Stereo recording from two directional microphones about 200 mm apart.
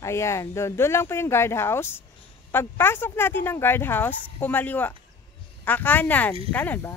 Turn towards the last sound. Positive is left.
turn(degrees=10)  # may be behind; listen again after turning